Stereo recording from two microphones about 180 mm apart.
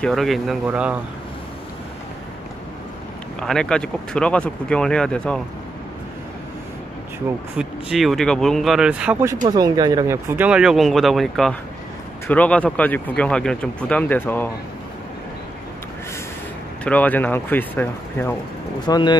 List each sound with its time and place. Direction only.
0.0 s speech: centre (ahead or behind)
3.3 s speech: 5° left (ahead or behind)
7.5 s speech: centre (ahead or behind)
9.5 s speech: 20° right (ahead or behind); by 14.5 s 10° left (ahead or behind)
16.8 s speech: 10° left (ahead or behind)
18.8 s speech: 25° left (ahead or behind)